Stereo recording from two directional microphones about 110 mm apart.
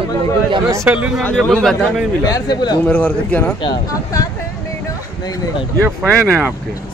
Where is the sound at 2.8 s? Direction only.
15° left (ahead or behind).